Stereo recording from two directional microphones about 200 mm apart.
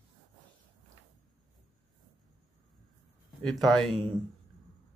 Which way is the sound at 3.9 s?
25° right (ahead or behind).